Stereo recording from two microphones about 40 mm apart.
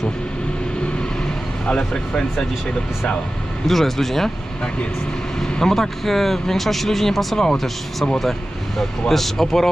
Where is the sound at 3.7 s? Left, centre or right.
Centre.